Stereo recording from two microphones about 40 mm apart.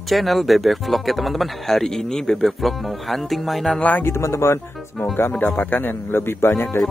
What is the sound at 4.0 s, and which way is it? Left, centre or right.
Speech, left.